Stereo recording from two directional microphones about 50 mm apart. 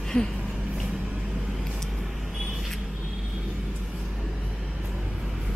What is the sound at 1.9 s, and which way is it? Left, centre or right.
Vehicle, centre.